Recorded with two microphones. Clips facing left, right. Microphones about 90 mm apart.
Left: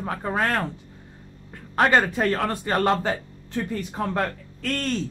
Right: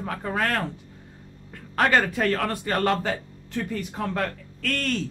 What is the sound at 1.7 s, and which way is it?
A man's voice, 25° left (ahead or behind).